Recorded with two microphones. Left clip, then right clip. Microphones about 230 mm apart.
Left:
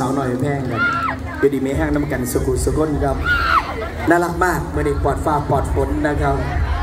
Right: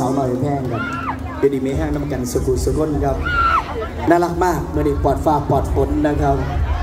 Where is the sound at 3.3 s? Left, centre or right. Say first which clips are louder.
Even; left.